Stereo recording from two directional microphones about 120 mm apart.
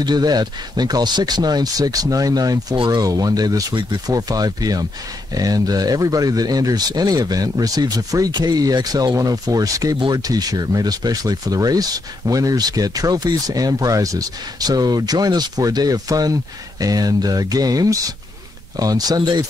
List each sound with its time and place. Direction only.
0.0 s speech: 35° right (ahead or behind)